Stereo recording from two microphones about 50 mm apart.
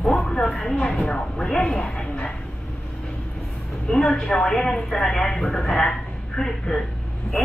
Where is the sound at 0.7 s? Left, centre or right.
Centre.